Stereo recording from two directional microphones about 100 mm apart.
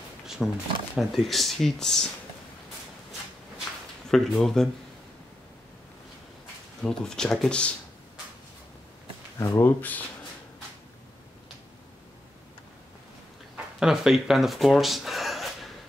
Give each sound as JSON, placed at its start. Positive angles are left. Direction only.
{"t": 0.4, "sound": "speech", "side_deg": 0}
{"t": 4.1, "sound": "speech", "side_deg": 5}
{"t": 6.8, "sound": "speech", "side_deg": 5}
{"t": 9.6, "sound": "speech", "side_deg": 20}
{"t": 13.7, "sound": "speech", "side_deg": -5}